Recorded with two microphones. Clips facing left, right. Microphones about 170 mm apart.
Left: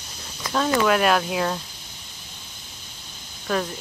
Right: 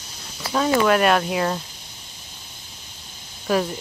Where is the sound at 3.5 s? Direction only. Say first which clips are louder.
Right 4 dB; 5° right (ahead or behind).